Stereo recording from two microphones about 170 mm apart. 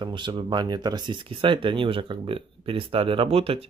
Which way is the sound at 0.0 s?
25° right (ahead or behind).